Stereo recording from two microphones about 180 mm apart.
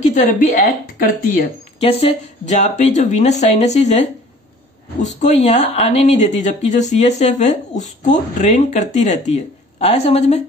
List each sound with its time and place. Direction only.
0.0 s speech: 45° left (ahead or behind)
1.8 s speech: 35° left (ahead or behind)